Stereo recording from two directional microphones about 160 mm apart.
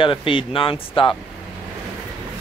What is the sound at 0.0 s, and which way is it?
Speech, 30° left (ahead or behind).